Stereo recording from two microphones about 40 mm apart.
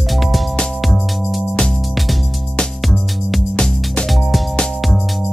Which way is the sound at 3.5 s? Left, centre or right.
Left.